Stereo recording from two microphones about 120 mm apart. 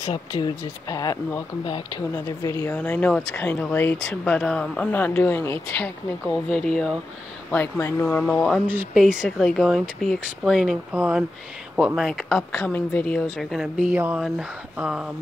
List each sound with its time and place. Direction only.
0.1 s speech: 35° left (ahead or behind); by 5.9 s 20° left (ahead or behind)
6.2 s speech: 5° left (ahead or behind)
7.5 s speech: 20° left (ahead or behind)
9.1 s speech: 5° right (ahead or behind); by 13.0 s 10° left (ahead or behind)
13.1 s speech: centre (ahead or behind)
13.9 s speech: 15° right (ahead or behind)